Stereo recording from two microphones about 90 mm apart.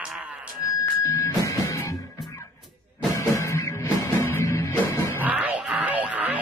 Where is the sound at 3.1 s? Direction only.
35° left (ahead or behind).